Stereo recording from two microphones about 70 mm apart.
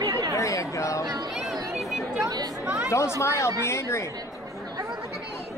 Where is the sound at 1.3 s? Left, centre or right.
Centre.